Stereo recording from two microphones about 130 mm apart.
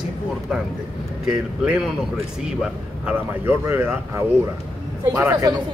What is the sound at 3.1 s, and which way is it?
Speech, 15° right (ahead or behind).